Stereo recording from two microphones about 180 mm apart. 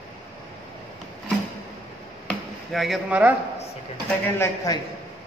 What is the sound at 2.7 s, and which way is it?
Speech, centre (ahead or behind).